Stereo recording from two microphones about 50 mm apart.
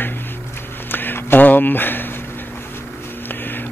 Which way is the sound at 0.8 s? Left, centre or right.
Left.